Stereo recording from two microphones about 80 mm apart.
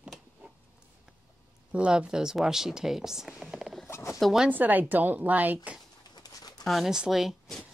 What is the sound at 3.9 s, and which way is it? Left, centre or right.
Zipper, left.